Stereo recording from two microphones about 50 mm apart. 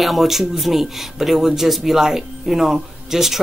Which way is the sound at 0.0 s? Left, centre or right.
Centre.